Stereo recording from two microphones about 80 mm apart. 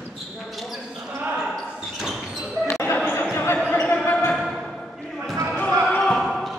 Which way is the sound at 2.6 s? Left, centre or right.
Left.